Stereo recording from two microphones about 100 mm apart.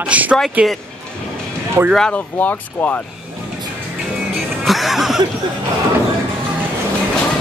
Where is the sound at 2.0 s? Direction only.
10° left (ahead or behind).